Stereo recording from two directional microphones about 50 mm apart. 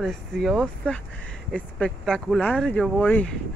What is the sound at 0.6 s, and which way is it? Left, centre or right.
Speech, left.